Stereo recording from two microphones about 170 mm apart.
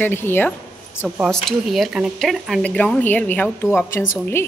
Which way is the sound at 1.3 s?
Centre (ahead or behind).